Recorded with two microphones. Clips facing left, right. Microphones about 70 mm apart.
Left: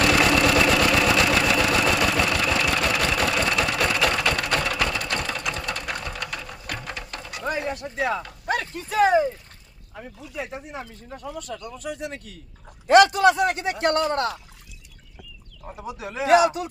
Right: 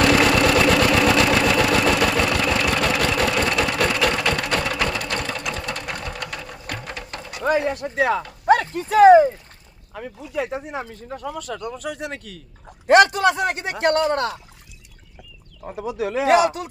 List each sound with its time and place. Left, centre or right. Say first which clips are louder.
0.0 s vehicle: right 3 dB; right
3.9 s sewing machine: right 2 dB; right
6.7 s sewing machine: right 1 dB; right
7.4 s a sound: right 7 dB; right
7.9 s a sound: right 5 dB; right
8.5 s a sound: right 10 dB; right
9.9 s a man's voice: right 7 dB; right
12.8 s a man's voice: right 1 dB; right
15.8 s a man's voice: right 7 dB; right